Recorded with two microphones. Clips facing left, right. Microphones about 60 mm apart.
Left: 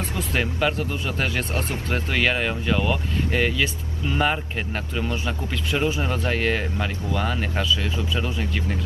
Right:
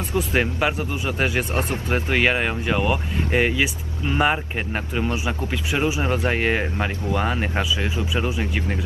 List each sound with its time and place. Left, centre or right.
0.3 s speech: centre